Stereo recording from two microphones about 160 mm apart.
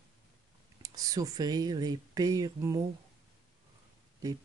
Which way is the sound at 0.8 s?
20° right (ahead or behind).